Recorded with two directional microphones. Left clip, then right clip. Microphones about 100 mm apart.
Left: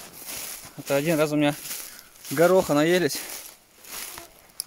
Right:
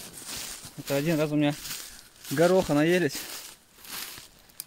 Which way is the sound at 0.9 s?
50° left (ahead or behind).